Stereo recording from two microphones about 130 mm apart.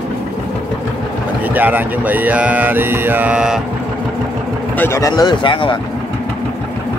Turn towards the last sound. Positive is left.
turn(degrees=35)  # may be behind; listen again after turning